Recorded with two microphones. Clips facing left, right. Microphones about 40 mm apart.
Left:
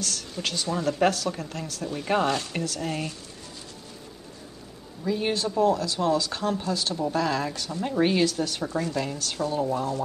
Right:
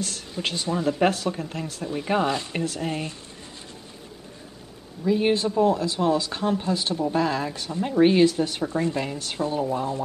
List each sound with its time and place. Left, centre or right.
0.0 s a woman's voice: right
1.9 s speech: centre
2.4 s a woman's voice: right
5.0 s a woman's voice: centre
7.8 s speech: centre
8.1 s a woman's voice: right